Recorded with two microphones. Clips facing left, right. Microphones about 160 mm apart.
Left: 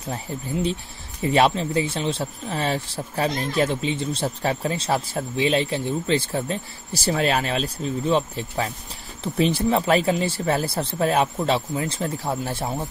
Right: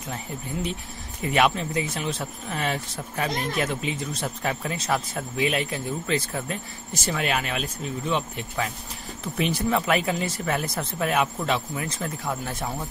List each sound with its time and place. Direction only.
0.1 s speech: 30° left (ahead or behind)